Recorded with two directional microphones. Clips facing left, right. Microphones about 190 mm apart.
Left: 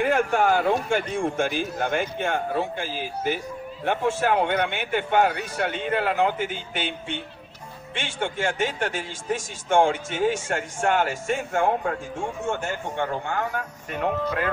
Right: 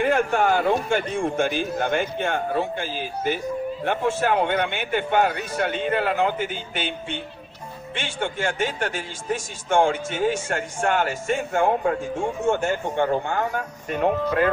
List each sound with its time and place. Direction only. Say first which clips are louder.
0.0 s a man's voice: right 1 dB; 5° left (ahead or behind)
12.5 s speech: right 5 dB; 30° right (ahead or behind)